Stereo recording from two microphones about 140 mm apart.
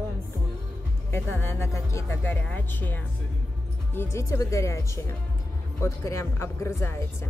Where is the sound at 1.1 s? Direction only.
20° left (ahead or behind).